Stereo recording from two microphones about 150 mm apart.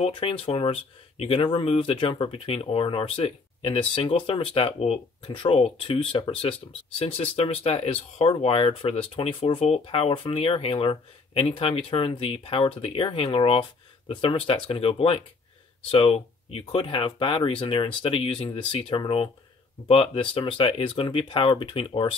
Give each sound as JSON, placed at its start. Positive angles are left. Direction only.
{"t": 0.0, "sound": "speech", "side_deg": 40}